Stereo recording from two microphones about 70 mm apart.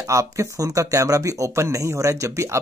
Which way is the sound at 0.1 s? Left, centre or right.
Right.